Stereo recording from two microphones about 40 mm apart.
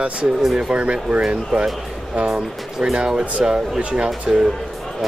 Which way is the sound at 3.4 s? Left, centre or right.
Centre.